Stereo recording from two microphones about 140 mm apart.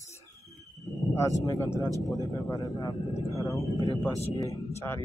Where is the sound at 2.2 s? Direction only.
25° left (ahead or behind).